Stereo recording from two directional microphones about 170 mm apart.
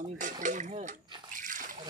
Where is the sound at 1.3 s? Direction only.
50° right (ahead or behind).